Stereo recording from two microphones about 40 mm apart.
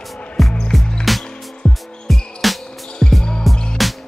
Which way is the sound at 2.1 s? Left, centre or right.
Centre.